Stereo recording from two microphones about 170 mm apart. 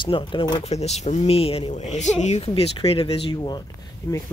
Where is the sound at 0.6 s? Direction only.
40° left (ahead or behind).